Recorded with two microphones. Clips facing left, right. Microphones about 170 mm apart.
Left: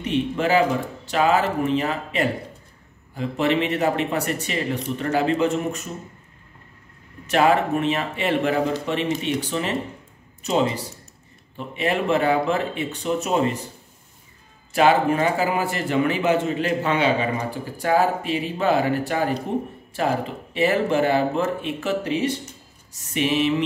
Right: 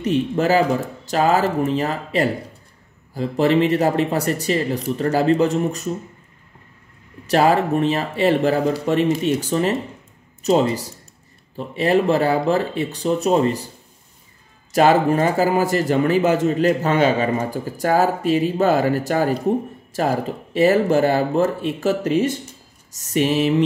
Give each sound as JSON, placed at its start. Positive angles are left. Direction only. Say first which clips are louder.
{"t": 0.0, "sound": "speech", "louder": "right 4 dB", "side_deg": -40}
{"t": 7.2, "sound": "speech", "louder": "right 2 dB", "side_deg": -35}
{"t": 14.7, "sound": "speech", "louder": "right 3 dB", "side_deg": -40}